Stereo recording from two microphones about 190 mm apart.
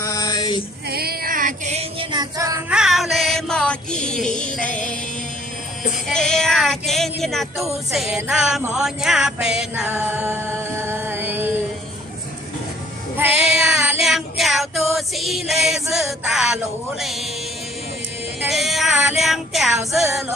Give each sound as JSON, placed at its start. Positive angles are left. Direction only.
{"t": 0.0, "sound": "male singing", "side_deg": 20}
{"t": 0.8, "sound": "a sound", "side_deg": -55}
{"t": 2.7, "sound": "music", "side_deg": 0}
{"t": 6.0, "sound": "music", "side_deg": 5}
{"t": 13.2, "sound": "child singing", "side_deg": -5}
{"t": 18.5, "sound": "female singing", "side_deg": 0}
{"t": 19.9, "sound": "music", "side_deg": 0}